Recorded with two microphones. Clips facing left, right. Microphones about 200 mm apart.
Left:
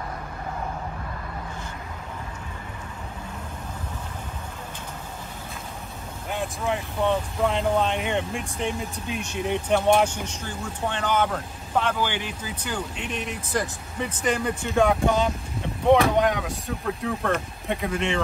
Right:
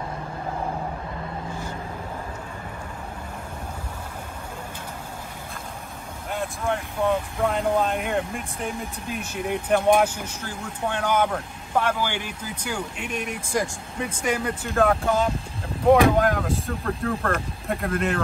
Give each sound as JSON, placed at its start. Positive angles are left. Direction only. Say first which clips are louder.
{"t": 6.3, "sound": "speech", "louder": "even", "side_deg": 0}